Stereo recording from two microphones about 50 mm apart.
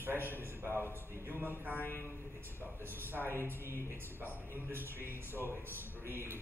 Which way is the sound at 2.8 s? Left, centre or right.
Right.